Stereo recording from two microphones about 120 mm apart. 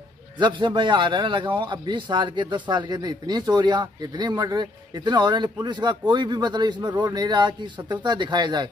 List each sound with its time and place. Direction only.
0.4 s speech: 40° right (ahead or behind)